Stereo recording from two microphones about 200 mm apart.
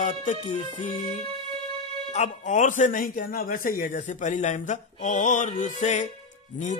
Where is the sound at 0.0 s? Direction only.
40° left (ahead or behind).